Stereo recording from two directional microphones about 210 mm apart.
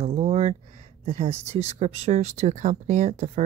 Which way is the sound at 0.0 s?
30° right (ahead or behind).